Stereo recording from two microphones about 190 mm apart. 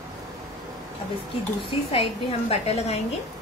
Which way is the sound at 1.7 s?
30° left (ahead or behind).